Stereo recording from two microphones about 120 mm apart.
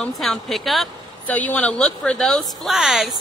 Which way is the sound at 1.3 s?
10° left (ahead or behind).